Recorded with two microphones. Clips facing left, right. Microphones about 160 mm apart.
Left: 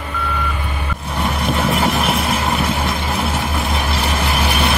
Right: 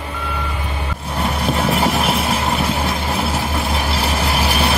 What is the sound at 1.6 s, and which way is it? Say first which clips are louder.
Vehicle: even; 30° right (ahead or behind).